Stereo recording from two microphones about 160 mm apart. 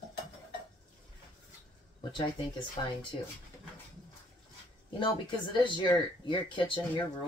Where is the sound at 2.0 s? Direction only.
30° left (ahead or behind).